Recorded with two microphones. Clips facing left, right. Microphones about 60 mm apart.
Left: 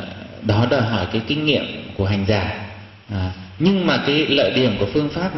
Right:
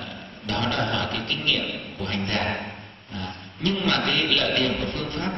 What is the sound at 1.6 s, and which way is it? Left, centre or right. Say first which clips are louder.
Speech: left 6 dB; left.